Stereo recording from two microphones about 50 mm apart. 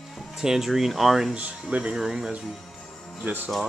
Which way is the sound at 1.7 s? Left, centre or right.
Right.